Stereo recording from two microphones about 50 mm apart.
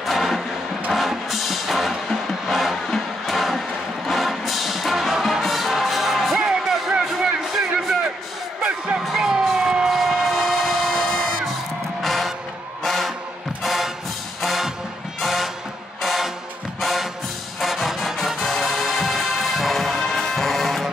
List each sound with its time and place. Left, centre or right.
0.0 s a sound: centre
0.9 s music: centre
6.4 s a sound: centre
8.6 s music: right
9.0 s emergency vehicle: centre
9.9 s vehicle: centre
11.0 s music: centre